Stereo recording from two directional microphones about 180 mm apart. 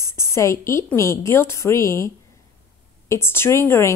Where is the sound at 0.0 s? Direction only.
15° left (ahead or behind).